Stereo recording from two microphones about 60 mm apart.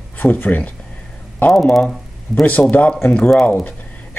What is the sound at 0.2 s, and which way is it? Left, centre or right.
Speech, left.